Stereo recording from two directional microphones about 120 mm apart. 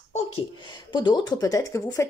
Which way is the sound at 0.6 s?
40° left (ahead or behind).